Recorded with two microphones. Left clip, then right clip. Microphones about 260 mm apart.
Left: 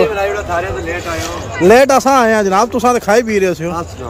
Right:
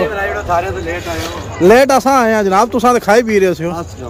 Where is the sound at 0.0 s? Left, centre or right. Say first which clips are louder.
Left 3 dB; left.